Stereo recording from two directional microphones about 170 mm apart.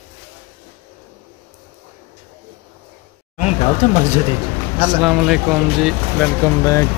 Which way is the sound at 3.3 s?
45° left (ahead or behind).